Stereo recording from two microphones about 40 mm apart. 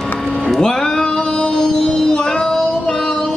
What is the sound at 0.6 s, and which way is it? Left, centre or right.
Music, centre.